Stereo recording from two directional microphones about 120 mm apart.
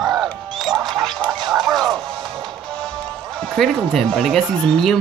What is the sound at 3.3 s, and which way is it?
Speech, 5° left (ahead or behind).